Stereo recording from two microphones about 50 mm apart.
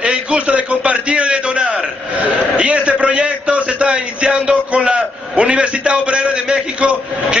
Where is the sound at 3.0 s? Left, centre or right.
Centre.